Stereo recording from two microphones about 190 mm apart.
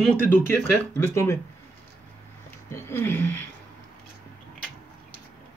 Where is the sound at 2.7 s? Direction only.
10° left (ahead or behind).